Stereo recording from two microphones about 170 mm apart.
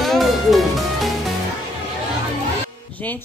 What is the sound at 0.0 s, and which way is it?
Music, centre (ahead or behind).